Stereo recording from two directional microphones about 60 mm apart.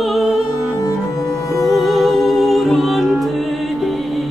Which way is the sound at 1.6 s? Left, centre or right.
Centre.